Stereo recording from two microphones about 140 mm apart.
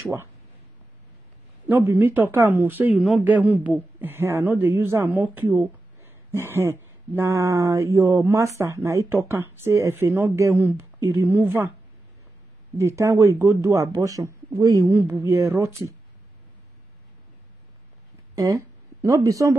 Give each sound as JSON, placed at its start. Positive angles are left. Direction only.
{"t": 1.7, "sound": "a woman's voice", "side_deg": -15}
{"t": 12.7, "sound": "speech", "side_deg": -20}
{"t": 18.3, "sound": "speech", "side_deg": -25}